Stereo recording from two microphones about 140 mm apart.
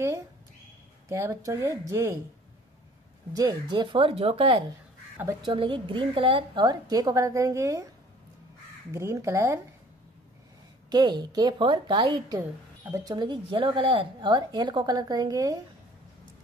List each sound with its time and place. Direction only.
1.0 s a woman's voice: 20° right (ahead or behind)
3.3 s a woman's voice: 30° right (ahead or behind)
8.9 s a woman's voice: 20° right (ahead or behind)
10.9 s speech: 30° right (ahead or behind)